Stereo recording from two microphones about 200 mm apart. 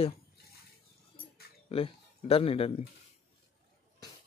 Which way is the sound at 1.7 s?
30° left (ahead or behind).